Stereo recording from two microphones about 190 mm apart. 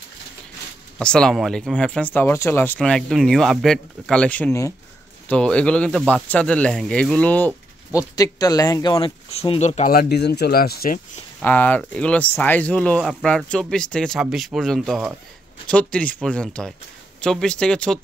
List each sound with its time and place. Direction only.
0.9 s speech: 5° left (ahead or behind); by 9.9 s 35° left (ahead or behind)
9.9 s speech: 60° left (ahead or behind)
11.4 s speech: 10° left (ahead or behind)